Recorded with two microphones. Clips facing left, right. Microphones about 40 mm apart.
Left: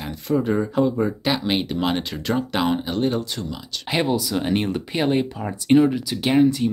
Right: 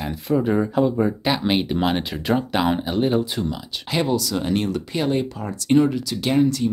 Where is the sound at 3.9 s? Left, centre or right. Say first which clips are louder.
Even; centre.